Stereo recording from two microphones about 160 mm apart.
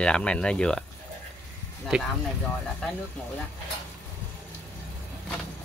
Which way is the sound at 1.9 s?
5° right (ahead or behind).